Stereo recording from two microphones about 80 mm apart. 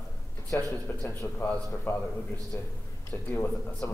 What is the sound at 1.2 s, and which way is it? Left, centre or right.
A man's voice, left.